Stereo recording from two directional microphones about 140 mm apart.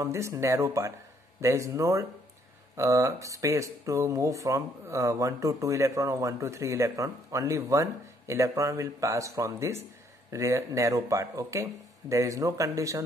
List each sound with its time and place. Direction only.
0.0 s speech: 20° right (ahead or behind)